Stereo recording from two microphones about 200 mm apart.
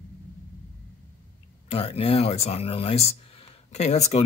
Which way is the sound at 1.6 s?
30° left (ahead or behind).